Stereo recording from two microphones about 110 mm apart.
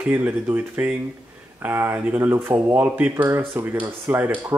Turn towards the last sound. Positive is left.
turn(degrees=-20)  # may be behind; listen again after turning